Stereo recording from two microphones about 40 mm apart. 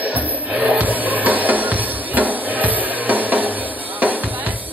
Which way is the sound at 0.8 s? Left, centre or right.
Right.